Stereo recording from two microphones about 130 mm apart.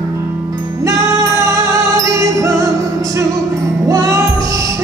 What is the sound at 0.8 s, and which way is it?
Music, 25° right (ahead or behind).